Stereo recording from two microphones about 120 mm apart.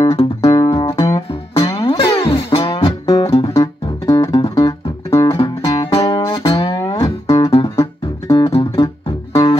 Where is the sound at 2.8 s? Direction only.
35° left (ahead or behind).